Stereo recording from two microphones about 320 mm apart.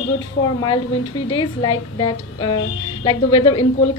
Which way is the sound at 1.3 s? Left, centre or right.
Centre.